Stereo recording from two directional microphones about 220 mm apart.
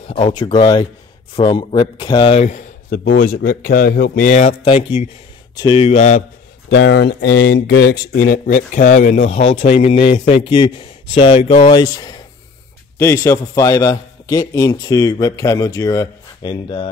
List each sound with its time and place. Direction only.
0.0 s a man's voice: 25° left (ahead or behind)
6.7 s a man's voice: 50° left (ahead or behind); by 16.9 s 25° left (ahead or behind)